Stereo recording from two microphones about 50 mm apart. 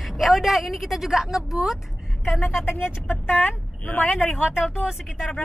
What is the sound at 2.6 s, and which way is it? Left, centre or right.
Speech, left.